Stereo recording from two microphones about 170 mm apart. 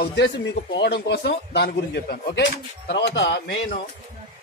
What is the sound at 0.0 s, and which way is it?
A man's voice, 85° left.